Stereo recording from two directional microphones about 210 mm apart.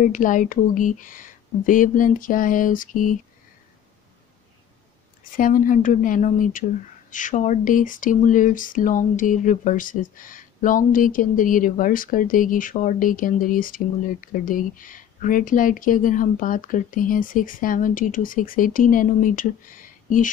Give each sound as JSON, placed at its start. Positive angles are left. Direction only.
{"t": 0.0, "sound": "speech", "side_deg": 40}
{"t": 5.3, "sound": "speech", "side_deg": 40}